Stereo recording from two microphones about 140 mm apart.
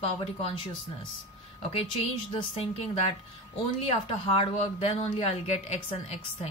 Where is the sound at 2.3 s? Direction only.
45° left (ahead or behind).